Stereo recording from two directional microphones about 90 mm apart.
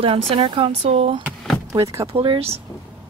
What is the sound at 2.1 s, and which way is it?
Speech, 80° right.